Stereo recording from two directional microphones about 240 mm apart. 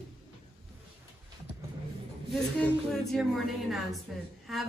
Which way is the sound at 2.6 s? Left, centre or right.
Centre.